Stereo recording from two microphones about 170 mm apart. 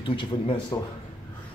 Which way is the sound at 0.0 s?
30° left (ahead or behind).